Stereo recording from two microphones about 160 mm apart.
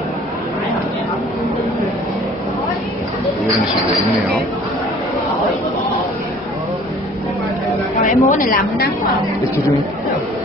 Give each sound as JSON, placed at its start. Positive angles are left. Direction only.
{"t": 8.0, "sound": "a woman's voice", "side_deg": 55}